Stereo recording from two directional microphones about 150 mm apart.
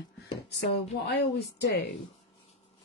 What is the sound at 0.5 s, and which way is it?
Speech, 90° left.